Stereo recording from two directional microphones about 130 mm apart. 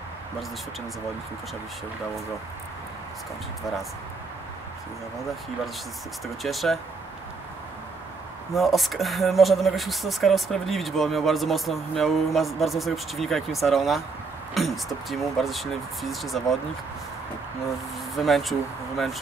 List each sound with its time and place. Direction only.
6.2 s speech: centre (ahead or behind)
8.5 s speech: centre (ahead or behind)
18.1 s speech: centre (ahead or behind)